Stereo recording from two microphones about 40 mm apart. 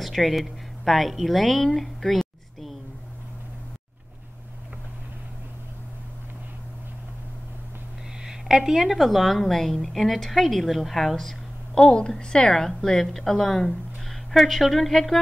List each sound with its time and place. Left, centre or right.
0.0 s a woman's voice: centre
8.2 s a woman's voice: centre
11.8 s a woman's voice: left